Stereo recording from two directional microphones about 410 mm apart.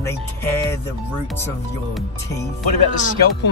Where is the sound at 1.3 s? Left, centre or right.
Centre.